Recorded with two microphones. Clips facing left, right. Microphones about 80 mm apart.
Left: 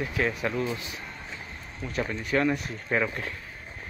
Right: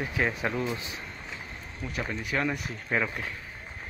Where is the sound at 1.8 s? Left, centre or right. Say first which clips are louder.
Left 3 dB; centre.